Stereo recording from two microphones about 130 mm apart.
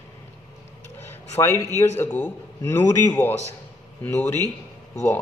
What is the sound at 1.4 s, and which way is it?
A man's voice, 20° left (ahead or behind).